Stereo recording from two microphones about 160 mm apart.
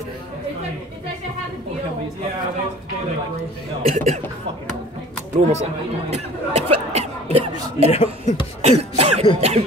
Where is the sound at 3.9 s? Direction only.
45° right (ahead or behind).